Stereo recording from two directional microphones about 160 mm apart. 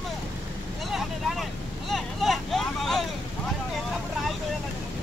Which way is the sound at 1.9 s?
Centre (ahead or behind).